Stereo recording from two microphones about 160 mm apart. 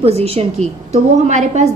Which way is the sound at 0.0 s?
40° right (ahead or behind).